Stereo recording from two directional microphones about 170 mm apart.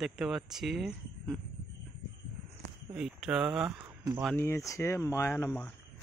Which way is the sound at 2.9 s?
5° right (ahead or behind).